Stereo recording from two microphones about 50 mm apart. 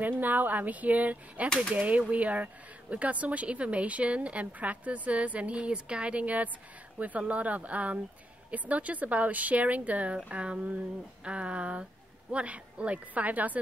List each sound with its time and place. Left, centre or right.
0.0 s a woman's voice: right